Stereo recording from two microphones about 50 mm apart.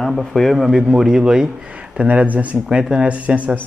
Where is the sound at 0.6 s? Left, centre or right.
Centre.